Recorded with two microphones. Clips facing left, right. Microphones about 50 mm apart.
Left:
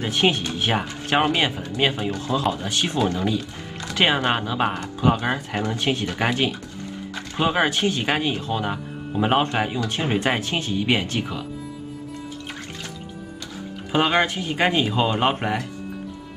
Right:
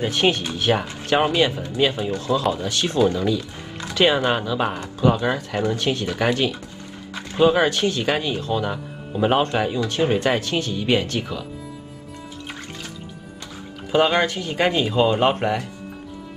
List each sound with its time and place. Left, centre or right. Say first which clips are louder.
0.1 s speech: right 1 dB; centre
13.9 s speech: right 2 dB; centre